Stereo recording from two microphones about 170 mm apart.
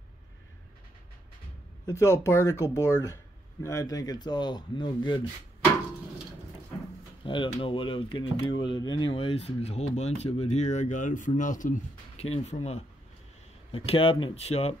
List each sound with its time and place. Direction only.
1.9 s speech: 15° left (ahead or behind)
7.2 s speech: 30° left (ahead or behind)